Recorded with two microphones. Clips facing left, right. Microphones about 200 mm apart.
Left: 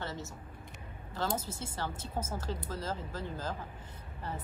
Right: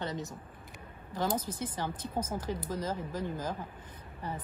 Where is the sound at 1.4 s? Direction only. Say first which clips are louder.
Right 3 dB; 15° right (ahead or behind).